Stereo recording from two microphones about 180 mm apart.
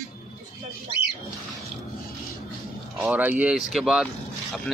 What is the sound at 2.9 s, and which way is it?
Speech, 10° right (ahead or behind).